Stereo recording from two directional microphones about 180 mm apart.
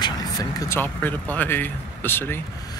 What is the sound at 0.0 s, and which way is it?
Speech, 20° left (ahead or behind).